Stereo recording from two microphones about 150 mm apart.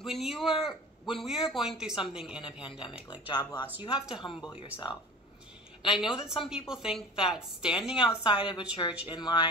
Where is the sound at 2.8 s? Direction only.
30° left (ahead or behind).